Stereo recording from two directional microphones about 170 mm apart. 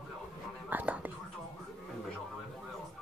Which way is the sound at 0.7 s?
10° right (ahead or behind).